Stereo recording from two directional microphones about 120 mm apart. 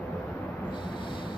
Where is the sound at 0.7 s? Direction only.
40° left (ahead or behind).